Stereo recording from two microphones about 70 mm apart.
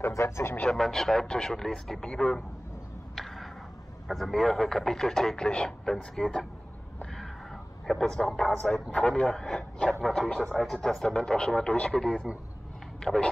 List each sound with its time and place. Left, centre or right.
0.0 s speech: left
0.7 s speech: centre
3.2 s a sound: centre
4.1 s speech: centre
7.8 s a man's voice: centre